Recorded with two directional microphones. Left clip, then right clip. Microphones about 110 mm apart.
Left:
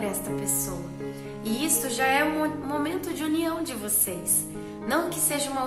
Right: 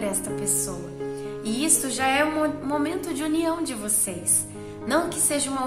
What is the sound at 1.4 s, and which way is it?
A woman's voice, 30° right (ahead or behind).